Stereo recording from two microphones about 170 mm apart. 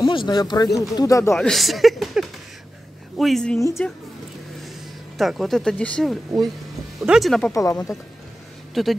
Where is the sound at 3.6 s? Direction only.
15° left (ahead or behind).